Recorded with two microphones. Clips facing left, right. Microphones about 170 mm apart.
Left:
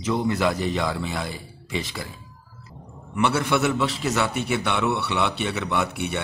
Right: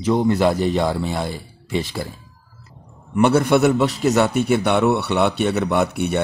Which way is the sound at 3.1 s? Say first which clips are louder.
Right 7 dB; 45° right (ahead or behind).